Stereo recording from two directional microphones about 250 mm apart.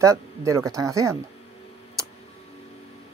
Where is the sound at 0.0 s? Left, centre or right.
Centre.